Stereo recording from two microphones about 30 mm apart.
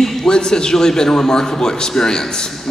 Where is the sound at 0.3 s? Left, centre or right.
Left.